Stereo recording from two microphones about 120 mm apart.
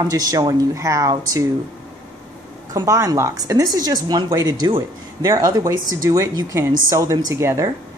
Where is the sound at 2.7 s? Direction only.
30° right (ahead or behind).